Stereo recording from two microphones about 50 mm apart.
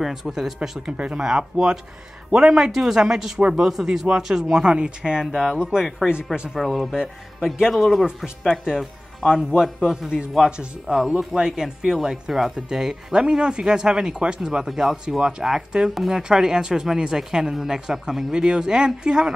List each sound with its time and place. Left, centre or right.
0.0 s speech: centre
0.9 s speech: centre
3.3 s speech: right
3.6 s speech: centre
15.9 s speech: centre
16.2 s speech: centre